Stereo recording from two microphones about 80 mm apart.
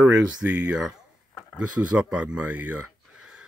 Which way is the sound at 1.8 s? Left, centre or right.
Centre.